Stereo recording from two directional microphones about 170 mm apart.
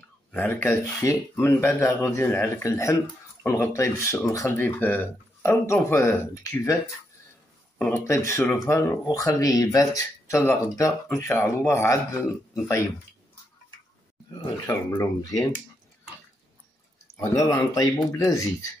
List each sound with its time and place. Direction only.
0.3 s speech: 10° left (ahead or behind)
7.8 s speech: 15° left (ahead or behind)
14.4 s speech: 25° left (ahead or behind)
17.2 s speech: 20° left (ahead or behind)